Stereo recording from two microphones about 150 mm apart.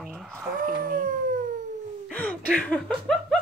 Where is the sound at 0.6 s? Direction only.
70° right (ahead or behind).